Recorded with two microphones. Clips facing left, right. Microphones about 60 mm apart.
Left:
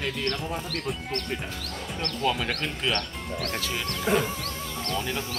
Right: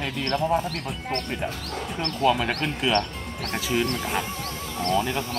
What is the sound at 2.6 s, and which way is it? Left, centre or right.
Speech, centre.